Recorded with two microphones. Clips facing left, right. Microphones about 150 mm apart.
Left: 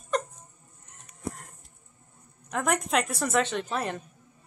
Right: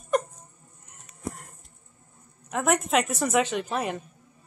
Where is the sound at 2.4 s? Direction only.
5° right (ahead or behind).